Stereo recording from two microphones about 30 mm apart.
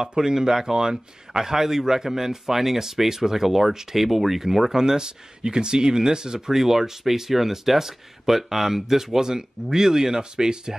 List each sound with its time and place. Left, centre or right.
0.0 s speech: right
6.5 s speech: centre; by 10.7 s right